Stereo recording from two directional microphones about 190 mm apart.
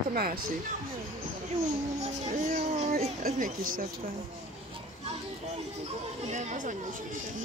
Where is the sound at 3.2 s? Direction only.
50° right (ahead or behind).